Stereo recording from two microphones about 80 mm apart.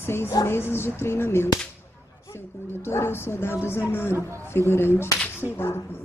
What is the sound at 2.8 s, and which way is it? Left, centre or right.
Speech, left.